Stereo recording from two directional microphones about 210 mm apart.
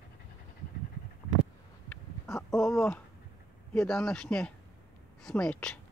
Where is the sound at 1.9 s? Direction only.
10° left (ahead or behind).